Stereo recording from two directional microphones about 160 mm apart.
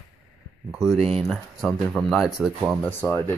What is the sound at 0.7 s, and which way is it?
Speech, centre (ahead or behind).